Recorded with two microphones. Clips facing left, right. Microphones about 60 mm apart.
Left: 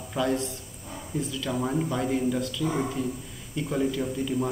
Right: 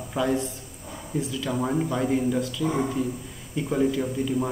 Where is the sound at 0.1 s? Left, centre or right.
Centre.